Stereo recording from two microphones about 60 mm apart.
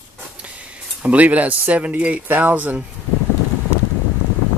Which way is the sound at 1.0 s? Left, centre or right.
Right.